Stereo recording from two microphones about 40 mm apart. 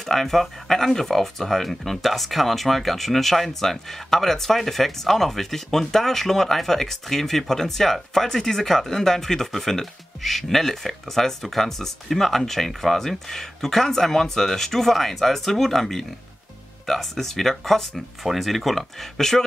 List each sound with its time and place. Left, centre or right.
0.0 s speech: centre